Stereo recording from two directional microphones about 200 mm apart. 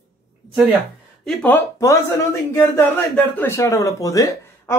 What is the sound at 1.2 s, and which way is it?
Speech, 10° left (ahead or behind).